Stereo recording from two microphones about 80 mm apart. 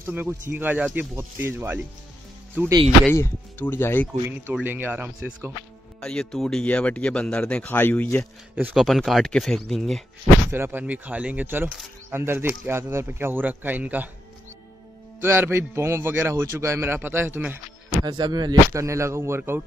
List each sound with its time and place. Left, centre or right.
0.0 s speech: right
3.1 s speech: left
4.6 s speech: right
5.9 s speech: centre
6.6 s speech: centre
8.7 s speech: centre
10.5 s speech: right
15.1 s a man's voice: right
18.0 s speech: right
18.7 s a man's voice: right